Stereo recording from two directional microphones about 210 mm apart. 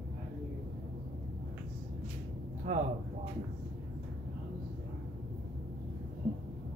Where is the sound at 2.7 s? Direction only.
40° right (ahead or behind).